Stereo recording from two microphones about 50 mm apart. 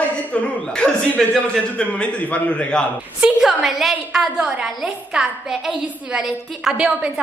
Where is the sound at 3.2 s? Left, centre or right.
Centre.